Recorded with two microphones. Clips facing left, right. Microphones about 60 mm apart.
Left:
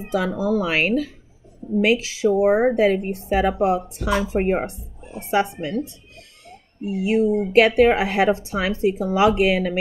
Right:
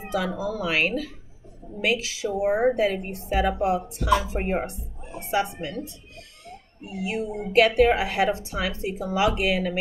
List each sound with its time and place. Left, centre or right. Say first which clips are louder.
0.1 s speech: left 6 dB; left
2.4 s speech: left 3 dB; left
7.1 s speech: left 10 dB; left